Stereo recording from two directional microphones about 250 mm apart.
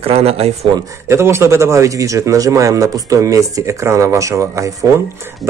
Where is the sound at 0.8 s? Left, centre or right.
Centre.